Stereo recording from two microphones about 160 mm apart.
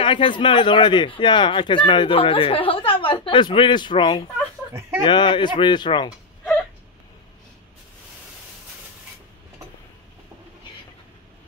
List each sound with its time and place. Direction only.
0.0 s speech: 30° left (ahead or behind)